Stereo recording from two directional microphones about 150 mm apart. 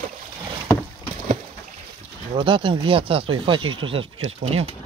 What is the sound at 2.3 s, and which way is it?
Speech, 35° right (ahead or behind).